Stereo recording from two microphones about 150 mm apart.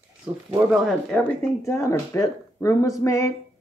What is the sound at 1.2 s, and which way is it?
Speech, 20° left (ahead or behind).